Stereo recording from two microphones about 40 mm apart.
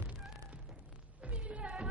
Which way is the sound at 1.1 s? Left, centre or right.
Right.